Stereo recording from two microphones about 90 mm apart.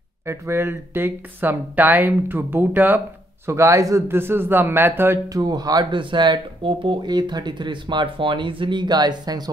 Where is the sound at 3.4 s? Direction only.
30° right (ahead or behind).